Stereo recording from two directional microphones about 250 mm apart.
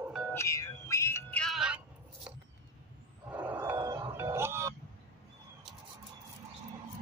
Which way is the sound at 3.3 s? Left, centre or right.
Centre.